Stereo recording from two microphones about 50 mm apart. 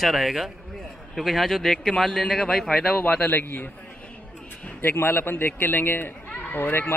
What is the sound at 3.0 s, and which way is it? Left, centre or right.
Speech, left.